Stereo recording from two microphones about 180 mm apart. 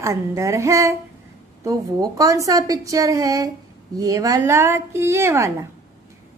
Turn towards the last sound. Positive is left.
turn(degrees=-15)  # may be behind; listen again after turning